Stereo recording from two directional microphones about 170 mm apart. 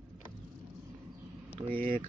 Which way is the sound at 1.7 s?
55° right (ahead or behind).